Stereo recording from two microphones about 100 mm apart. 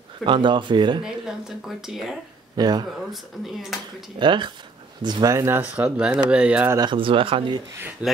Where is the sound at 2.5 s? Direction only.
45° right (ahead or behind).